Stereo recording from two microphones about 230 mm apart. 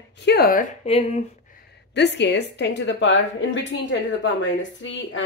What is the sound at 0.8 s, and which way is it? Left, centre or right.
Speech, left.